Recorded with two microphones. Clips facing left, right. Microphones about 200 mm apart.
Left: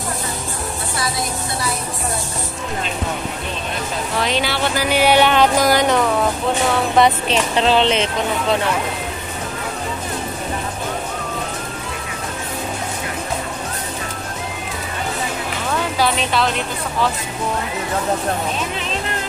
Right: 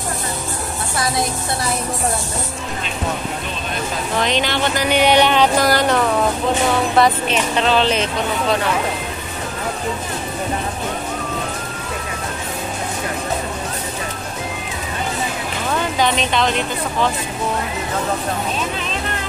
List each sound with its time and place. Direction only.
4.2 s speech: 5° left (ahead or behind)
7.5 s speech: 25° left (ahead or behind)
16.0 s speech: 5° left (ahead or behind)